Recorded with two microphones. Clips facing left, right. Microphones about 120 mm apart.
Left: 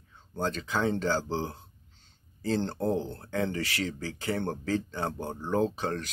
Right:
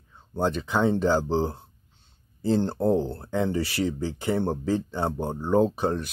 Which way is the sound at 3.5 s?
15° right (ahead or behind).